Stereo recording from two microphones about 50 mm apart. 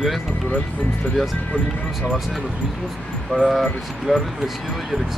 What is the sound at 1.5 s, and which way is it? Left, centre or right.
Speech, left.